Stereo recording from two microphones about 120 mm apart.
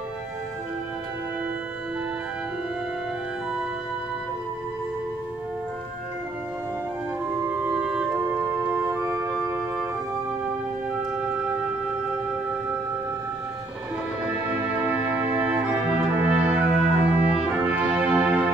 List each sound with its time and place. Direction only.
7.5 s music: 5° right (ahead or behind)
8.1 s music: 20° right (ahead or behind)
14.2 s music: 10° right (ahead or behind)